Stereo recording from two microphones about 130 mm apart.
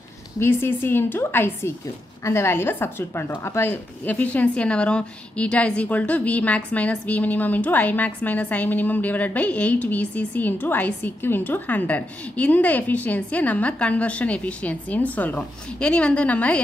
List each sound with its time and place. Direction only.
0.4 s a woman's voice: 15° left (ahead or behind)